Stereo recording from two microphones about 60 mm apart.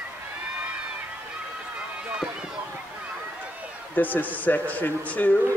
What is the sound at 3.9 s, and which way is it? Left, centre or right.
A man's voice, left.